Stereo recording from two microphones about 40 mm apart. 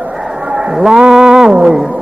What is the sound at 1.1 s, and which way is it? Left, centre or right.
Music, centre.